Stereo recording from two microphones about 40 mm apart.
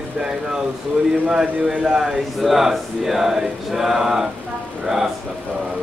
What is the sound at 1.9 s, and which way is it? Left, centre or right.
Speech, centre.